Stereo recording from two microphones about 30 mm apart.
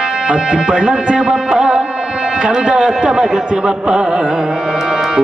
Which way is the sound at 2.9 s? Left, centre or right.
Right.